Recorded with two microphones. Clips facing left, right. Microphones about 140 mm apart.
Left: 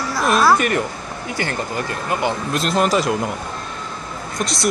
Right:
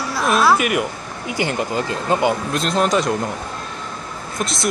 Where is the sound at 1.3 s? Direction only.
15° right (ahead or behind).